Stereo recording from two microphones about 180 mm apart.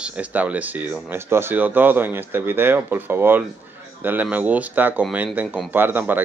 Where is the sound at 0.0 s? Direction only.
5° right (ahead or behind).